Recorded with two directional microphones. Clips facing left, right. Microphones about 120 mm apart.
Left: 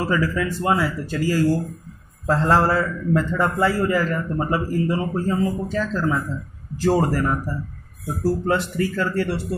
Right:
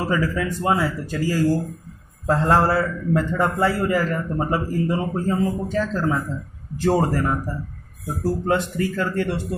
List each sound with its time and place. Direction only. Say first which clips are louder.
0.0 s a man's voice: left 1 dB; 25° right (ahead or behind)